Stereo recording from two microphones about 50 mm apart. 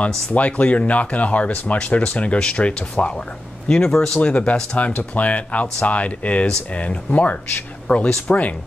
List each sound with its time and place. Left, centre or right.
0.3 s speech: left; by 4.2 s centre
4.2 s speech: left